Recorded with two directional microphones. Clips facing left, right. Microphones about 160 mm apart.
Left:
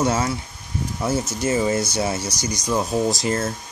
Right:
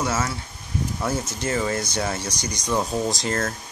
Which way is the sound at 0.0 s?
20° left (ahead or behind).